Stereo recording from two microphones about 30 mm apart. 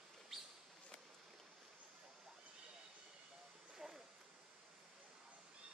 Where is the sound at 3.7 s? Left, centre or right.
Centre.